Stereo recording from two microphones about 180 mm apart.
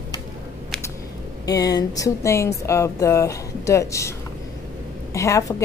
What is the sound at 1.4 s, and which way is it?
A woman's voice, 20° left (ahead or behind).